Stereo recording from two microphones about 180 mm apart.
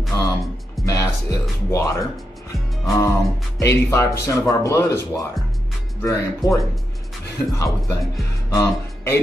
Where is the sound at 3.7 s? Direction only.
15° left (ahead or behind).